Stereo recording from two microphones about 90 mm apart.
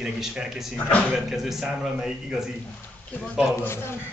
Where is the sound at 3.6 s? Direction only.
25° left (ahead or behind).